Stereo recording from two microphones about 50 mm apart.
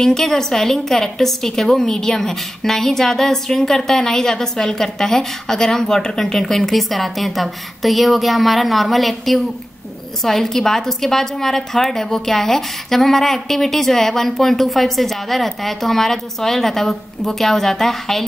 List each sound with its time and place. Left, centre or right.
0.0 s a woman's voice: centre